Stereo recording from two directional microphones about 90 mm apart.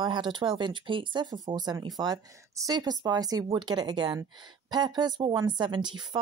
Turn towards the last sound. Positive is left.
turn(degrees=-60)  # may be behind; listen again after turning